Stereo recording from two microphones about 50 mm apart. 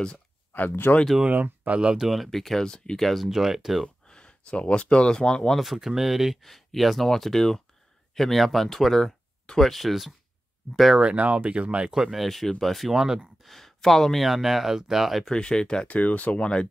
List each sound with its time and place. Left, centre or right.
0.5 s speech: left
1.2 s speech: right
2.0 s speech: centre
3.3 s speech: centre
3.8 s speech: centre
5.6 s speech: centre
11.0 s speech: right
11.9 s speech: centre
12.9 s speech: centre
13.4 s speech: centre
15.2 s speech: centre
15.9 s speech: left